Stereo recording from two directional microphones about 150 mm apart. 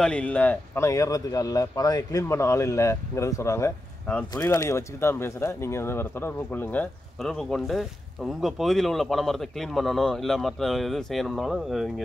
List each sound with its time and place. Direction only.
0.0 s speech: 5° left (ahead or behind)